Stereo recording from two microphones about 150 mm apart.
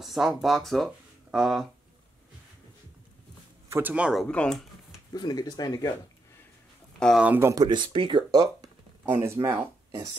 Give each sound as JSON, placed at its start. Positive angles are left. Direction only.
{"t": 0.0, "sound": "speech", "side_deg": 0}
{"t": 3.6, "sound": "speech", "side_deg": -15}
{"t": 4.3, "sound": "speech", "side_deg": 5}
{"t": 5.1, "sound": "speech", "side_deg": 25}
{"t": 7.0, "sound": "speech", "side_deg": 5}
{"t": 7.2, "sound": "speech", "side_deg": -15}
{"t": 7.6, "sound": "speech", "side_deg": -30}